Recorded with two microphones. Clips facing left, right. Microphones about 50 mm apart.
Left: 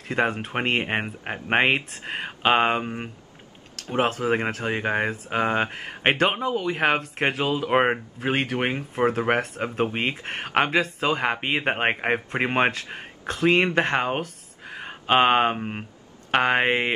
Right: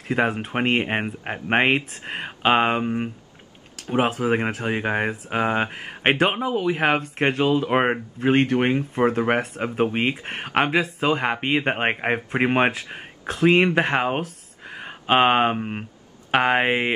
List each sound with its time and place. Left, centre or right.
0.1 s speech: centre